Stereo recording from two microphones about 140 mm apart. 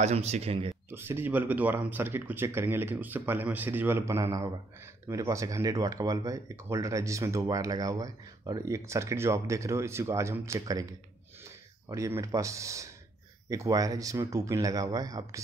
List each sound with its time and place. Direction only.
0.0 s speech: 50° right (ahead or behind)
0.8 s speech: 15° right (ahead or behind)